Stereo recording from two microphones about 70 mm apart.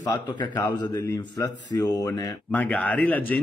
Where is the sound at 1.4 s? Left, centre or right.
Left.